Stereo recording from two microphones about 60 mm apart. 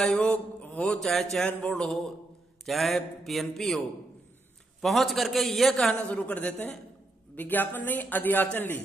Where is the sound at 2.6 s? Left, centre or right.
Centre.